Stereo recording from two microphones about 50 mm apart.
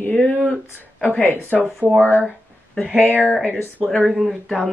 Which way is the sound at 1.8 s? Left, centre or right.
Right.